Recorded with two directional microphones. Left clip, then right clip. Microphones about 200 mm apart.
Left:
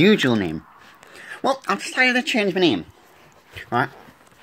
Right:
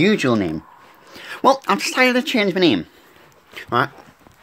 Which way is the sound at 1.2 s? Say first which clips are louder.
Right 7 dB; 25° right (ahead or behind).